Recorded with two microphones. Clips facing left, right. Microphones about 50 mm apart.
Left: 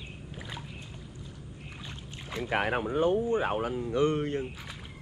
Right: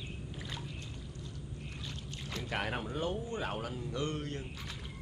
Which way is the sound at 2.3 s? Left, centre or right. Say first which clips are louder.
Left 8 dB; left.